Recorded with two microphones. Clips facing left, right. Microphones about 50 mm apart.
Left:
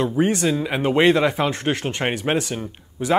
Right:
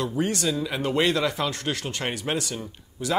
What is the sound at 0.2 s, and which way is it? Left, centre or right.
Speech, left.